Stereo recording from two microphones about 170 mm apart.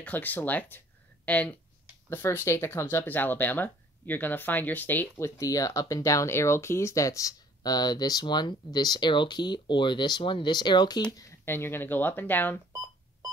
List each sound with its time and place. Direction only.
0.0 s speech: 10° left (ahead or behind)